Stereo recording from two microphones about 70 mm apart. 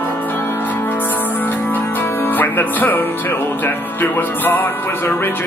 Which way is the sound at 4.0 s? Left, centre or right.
Left.